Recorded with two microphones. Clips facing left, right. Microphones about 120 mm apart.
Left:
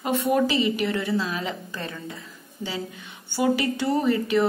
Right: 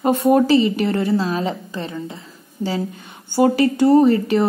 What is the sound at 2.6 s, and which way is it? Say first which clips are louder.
A woman's voice: right 8 dB; 40° right (ahead or behind).